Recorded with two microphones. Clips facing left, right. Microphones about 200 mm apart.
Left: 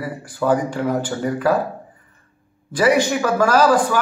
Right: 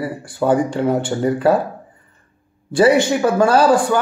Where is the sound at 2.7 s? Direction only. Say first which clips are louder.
Right 3 dB; 30° right (ahead or behind).